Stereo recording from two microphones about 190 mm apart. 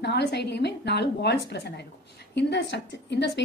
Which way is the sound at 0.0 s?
60° left (ahead or behind).